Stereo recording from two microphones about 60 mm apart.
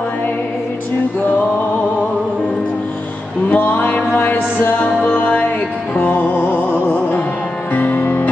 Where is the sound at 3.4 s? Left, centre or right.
Left.